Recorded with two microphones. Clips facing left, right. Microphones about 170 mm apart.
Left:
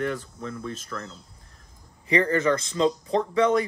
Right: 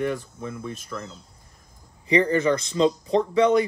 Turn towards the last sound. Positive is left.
turn(degrees=-20)  # may be behind; listen again after turning